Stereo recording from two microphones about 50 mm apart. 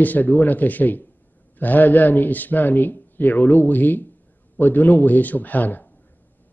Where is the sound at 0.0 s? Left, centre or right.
Left.